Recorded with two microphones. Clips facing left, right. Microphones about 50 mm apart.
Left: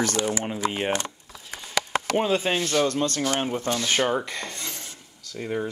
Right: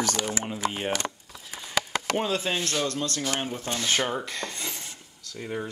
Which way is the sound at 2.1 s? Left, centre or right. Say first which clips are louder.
Left 4 dB; centre.